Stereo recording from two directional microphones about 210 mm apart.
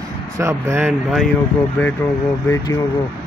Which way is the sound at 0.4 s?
15° right (ahead or behind).